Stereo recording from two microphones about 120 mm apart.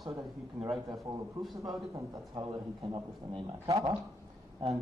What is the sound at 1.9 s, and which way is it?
Speech, 25° right (ahead or behind).